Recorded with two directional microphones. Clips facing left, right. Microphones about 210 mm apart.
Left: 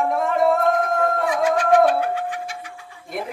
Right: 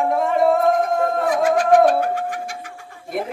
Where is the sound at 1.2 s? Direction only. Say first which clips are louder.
Right 2 dB; 45° right (ahead or behind).